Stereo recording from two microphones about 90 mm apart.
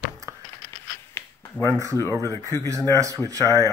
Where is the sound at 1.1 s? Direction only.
25° left (ahead or behind).